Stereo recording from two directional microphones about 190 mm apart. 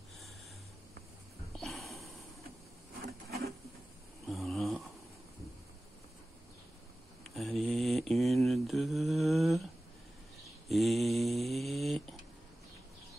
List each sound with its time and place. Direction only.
1.6 s snort: centre (ahead or behind)
3.3 s printer: 55° right (ahead or behind)
4.3 s snoring: centre (ahead or behind)
7.3 s mantra: centre (ahead or behind)
10.7 s mantra: centre (ahead or behind)